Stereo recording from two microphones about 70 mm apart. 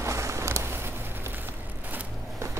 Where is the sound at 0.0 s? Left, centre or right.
Right.